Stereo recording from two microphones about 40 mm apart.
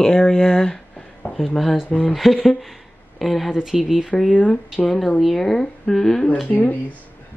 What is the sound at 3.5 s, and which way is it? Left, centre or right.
Speech, centre.